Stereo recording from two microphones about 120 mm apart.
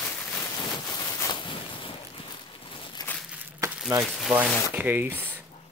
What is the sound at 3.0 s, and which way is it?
Walk, 35° left (ahead or behind).